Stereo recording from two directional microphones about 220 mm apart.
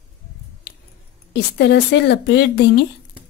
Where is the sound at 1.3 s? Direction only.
50° left (ahead or behind).